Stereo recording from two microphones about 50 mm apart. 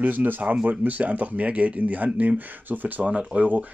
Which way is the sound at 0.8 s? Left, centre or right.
Right.